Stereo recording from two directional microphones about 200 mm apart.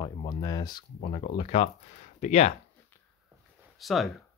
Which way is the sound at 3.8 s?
Centre (ahead or behind).